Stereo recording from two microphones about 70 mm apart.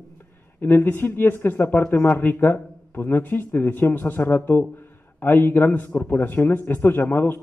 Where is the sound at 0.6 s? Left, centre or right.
Left.